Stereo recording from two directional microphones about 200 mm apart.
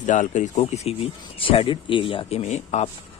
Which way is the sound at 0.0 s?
40° left (ahead or behind).